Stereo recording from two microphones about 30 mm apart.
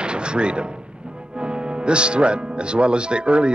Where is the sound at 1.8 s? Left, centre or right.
Right.